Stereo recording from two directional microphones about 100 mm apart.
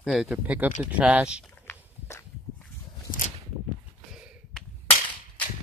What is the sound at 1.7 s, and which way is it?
Walk, 30° left (ahead or behind).